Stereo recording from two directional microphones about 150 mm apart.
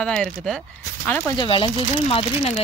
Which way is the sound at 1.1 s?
20° left (ahead or behind).